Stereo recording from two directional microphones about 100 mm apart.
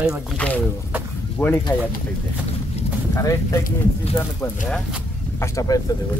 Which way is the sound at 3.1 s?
35° left (ahead or behind).